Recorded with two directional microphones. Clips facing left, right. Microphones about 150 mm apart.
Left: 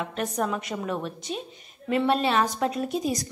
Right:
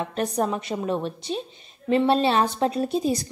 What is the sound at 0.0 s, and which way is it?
A woman's voice, 35° right (ahead or behind).